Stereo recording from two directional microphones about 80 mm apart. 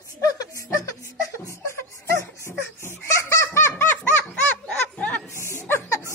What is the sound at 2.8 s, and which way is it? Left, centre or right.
Chicken, left.